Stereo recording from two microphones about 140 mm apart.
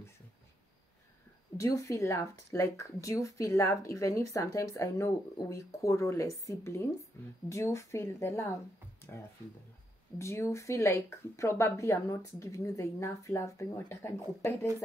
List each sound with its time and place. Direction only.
1.6 s speech: 25° left (ahead or behind)
10.1 s speech: 20° left (ahead or behind)